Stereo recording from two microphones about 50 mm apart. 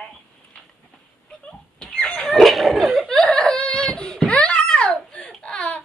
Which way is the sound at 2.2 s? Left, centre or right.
Centre.